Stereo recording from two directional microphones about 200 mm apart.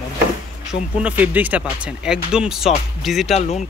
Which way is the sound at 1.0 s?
10° right (ahead or behind).